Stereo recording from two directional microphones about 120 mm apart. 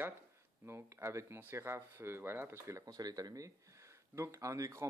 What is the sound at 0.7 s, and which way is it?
Speech, 20° right (ahead or behind).